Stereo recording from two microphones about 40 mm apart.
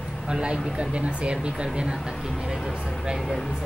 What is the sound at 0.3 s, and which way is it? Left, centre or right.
Speech, right.